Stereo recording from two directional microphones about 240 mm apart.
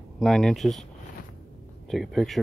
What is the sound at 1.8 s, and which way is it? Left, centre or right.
Speech, centre.